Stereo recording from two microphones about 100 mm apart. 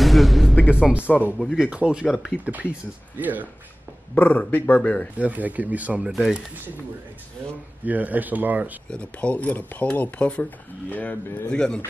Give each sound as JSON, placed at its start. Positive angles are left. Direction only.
{"t": 0.0, "sound": "music", "side_deg": 0}
{"t": 0.7, "sound": "speech", "side_deg": -10}
{"t": 4.1, "sound": "speech", "side_deg": 20}
{"t": 5.1, "sound": "speech", "side_deg": -15}
{"t": 6.1, "sound": "speech", "side_deg": 0}
{"t": 7.8, "sound": "speech", "side_deg": -15}
{"t": 8.9, "sound": "speech", "side_deg": 15}